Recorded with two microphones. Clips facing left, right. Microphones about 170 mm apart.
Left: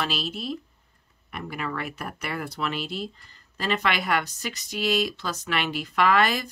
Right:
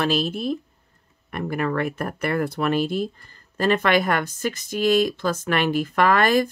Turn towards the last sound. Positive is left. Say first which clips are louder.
# right 4 dB
turn(degrees=-50)  # may be behind; listen again after turning